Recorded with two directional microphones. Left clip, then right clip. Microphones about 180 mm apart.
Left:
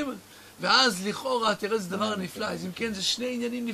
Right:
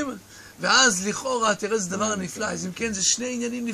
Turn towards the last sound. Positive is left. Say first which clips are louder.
# right 2 dB
turn(degrees=0)  # may be behind; listen again after turning